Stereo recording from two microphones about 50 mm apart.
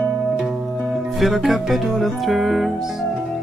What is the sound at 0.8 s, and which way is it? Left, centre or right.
Music, centre.